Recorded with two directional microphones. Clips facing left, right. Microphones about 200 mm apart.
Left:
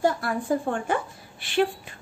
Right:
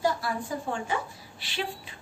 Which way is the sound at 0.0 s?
55° left (ahead or behind).